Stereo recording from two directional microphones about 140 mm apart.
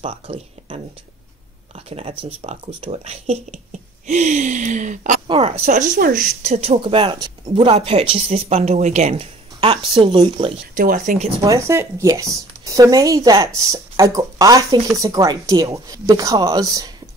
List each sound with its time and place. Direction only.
0.0 s speech: 40° right (ahead or behind)
1.9 s speech: 45° right (ahead or behind); by 5.2 s 60° right (ahead or behind)
5.2 s a woman's voice: 35° right (ahead or behind)
5.7 s speech: 65° right (ahead or behind); by 6.2 s 80° right
6.4 s speech: 55° right (ahead or behind)
6.8 s speech: 40° right (ahead or behind)
11.1 s speech: 50° right (ahead or behind)
11.4 s speech: 20° right (ahead or behind)